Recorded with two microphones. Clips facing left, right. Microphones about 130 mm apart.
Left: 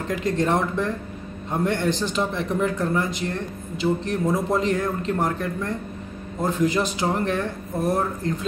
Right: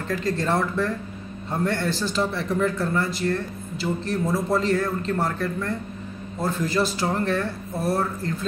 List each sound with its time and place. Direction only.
0.1 s a man's voice: 20° left (ahead or behind)